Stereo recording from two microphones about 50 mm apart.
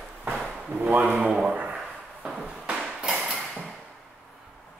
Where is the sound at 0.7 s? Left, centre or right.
Right.